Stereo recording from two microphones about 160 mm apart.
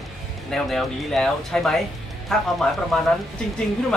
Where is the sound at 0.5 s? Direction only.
Centre (ahead or behind).